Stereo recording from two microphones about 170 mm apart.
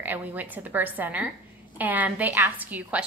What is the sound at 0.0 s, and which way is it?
A woman's voice, 10° right (ahead or behind).